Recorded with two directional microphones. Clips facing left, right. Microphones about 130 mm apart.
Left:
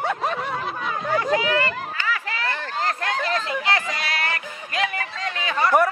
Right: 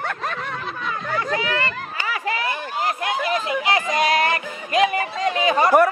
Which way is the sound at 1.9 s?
15° right (ahead or behind).